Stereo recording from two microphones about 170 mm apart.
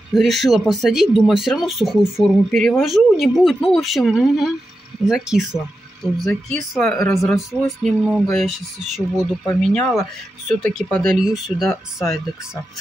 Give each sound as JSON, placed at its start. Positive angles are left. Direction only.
{"t": 0.1, "sound": "speech", "side_deg": 0}
{"t": 7.0, "sound": "speech", "side_deg": 20}
{"t": 7.2, "sound": "speech", "side_deg": 0}